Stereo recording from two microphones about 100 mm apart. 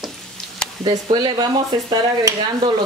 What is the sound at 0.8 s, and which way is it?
Speech, 50° right (ahead or behind).